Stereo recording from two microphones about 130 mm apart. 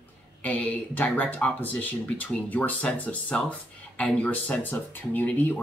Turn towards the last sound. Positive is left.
turn(degrees=15)  # may be behind; listen again after turning